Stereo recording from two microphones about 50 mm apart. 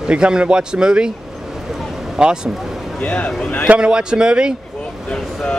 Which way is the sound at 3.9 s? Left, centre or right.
Centre.